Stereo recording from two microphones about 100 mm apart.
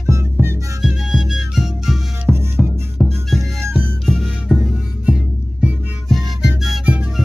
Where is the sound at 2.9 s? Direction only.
5° left (ahead or behind).